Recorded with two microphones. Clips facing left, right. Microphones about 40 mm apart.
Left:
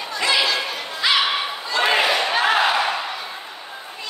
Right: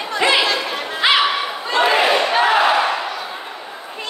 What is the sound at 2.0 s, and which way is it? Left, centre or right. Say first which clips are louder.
Crowd: right 4 dB; right.